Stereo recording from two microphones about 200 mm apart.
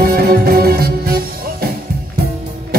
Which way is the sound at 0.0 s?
50° right (ahead or behind).